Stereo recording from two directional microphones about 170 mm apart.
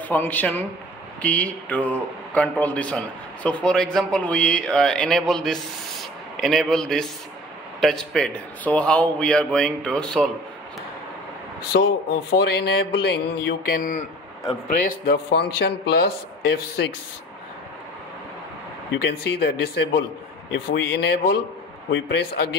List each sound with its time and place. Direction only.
0.1 s speech: 10° left (ahead or behind)
11.7 s speech: 90° left
12.3 s speech: 70° left (ahead or behind)
13.7 s a man's voice: 55° left (ahead or behind)
14.9 s speech: 70° left (ahead or behind)
18.9 s speech: 90° left
21.9 s speech: 90° left